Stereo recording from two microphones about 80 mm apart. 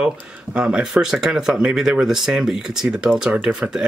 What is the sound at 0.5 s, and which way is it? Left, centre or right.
Speech, centre.